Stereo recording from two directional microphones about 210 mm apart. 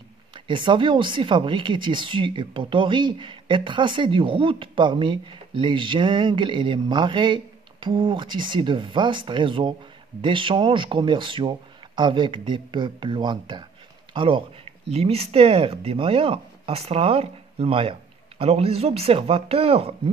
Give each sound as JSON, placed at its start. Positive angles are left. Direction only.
{"t": 0.3, "sound": "speech", "side_deg": -25}